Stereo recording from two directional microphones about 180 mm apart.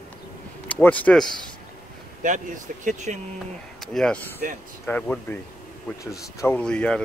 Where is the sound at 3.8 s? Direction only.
Centre (ahead or behind).